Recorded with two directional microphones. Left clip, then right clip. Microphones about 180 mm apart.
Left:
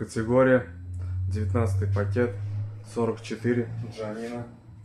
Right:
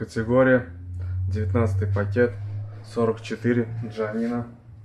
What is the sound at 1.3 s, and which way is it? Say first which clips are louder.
Speech: right 4 dB; 5° right (ahead or behind).